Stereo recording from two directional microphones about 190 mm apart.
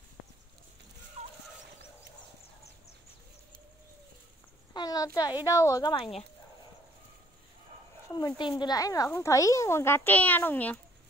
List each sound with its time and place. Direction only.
1.2 s turkey: 35° right (ahead or behind)
4.7 s speech: 20° left (ahead or behind)
8.1 s speech: 20° left (ahead or behind)